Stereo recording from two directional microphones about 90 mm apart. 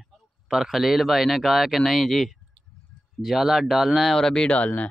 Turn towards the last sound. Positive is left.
turn(degrees=15)  # may be behind; listen again after turning